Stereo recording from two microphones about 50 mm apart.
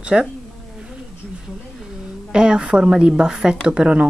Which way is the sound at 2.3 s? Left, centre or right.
Centre.